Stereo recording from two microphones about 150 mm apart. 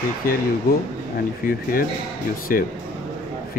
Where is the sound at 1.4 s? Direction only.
70° left (ahead or behind).